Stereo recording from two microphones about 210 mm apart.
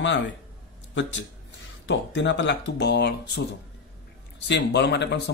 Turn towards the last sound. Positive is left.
turn(degrees=55)  # may be behind; listen again after turning